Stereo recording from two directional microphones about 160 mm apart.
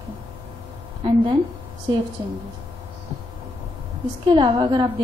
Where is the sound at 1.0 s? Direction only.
30° right (ahead or behind).